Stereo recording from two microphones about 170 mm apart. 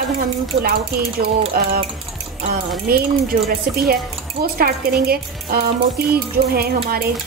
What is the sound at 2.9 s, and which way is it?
Speech, 60° right (ahead or behind).